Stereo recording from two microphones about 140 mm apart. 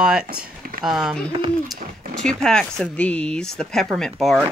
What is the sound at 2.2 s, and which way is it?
Speech, 5° left (ahead or behind).